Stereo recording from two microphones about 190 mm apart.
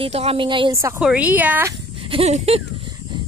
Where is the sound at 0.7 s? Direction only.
15° right (ahead or behind).